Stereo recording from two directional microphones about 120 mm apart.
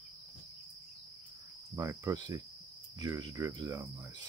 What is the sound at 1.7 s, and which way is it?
Cricket, 25° right (ahead or behind).